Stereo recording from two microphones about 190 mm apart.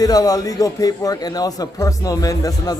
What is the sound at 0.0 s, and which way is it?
A man's voice, 20° left (ahead or behind).